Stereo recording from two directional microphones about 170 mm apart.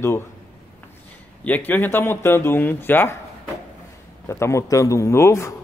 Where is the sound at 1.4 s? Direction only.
10° left (ahead or behind).